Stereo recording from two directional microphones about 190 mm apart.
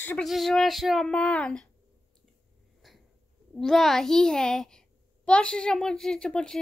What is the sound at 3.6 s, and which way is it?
A woman's voice, centre (ahead or behind).